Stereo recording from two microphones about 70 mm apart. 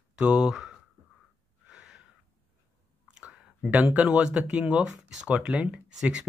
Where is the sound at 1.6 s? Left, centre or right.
Centre.